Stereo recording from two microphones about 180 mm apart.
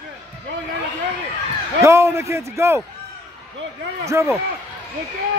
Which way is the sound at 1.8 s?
15° right (ahead or behind).